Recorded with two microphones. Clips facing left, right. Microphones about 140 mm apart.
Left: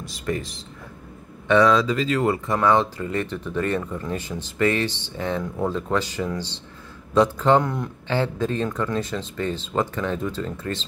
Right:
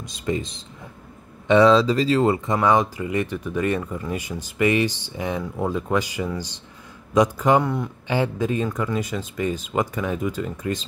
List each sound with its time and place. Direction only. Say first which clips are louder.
0.0 s speech: right 2 dB; 20° right (ahead or behind); by 7.9 s centre (ahead or behind)
8.1 s speech: right 1 dB; 10° right (ahead or behind)